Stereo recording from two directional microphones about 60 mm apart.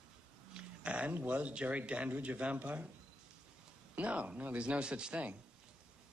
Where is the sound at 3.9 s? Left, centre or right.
Right.